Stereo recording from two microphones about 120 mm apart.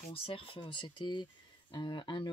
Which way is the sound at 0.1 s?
50° left (ahead or behind).